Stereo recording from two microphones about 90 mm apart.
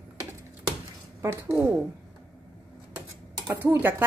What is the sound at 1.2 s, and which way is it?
Speech, 30° right (ahead or behind).